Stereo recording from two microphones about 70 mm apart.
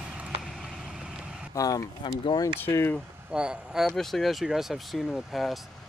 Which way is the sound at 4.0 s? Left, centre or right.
Centre.